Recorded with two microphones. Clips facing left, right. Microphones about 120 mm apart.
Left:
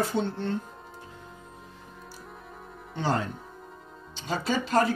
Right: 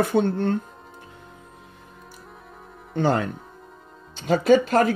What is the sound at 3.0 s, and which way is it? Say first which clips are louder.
A woman's voice: right 6 dB; 55° right (ahead or behind).